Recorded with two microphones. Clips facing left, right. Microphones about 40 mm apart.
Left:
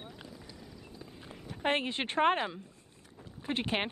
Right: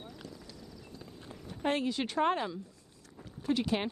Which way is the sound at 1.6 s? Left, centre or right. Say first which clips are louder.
Even; left.